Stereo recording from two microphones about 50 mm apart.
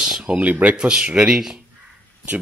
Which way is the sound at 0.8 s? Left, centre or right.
Centre.